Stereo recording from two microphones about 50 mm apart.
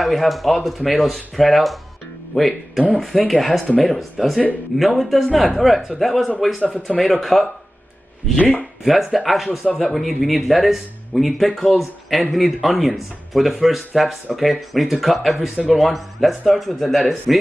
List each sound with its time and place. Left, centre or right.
0.0 s speech: centre
6.7 s speech: centre
7.2 s speech: centre
8.4 s speech: left
8.8 s speech: centre